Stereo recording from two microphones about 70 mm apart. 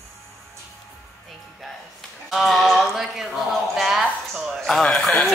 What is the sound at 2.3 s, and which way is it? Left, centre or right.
Speech, centre.